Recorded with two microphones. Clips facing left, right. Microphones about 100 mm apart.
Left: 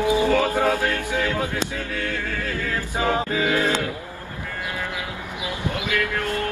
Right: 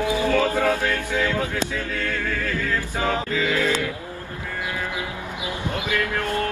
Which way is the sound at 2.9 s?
20° left (ahead or behind).